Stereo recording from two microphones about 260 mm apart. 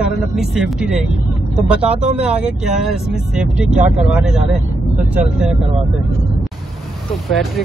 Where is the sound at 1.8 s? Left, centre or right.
Right.